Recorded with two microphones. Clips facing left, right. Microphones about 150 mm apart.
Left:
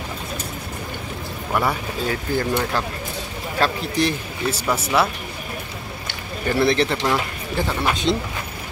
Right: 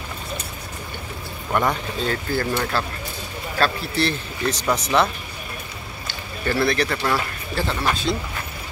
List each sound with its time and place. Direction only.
1.5 s speech: 10° left (ahead or behind)
6.4 s speech: 20° left (ahead or behind)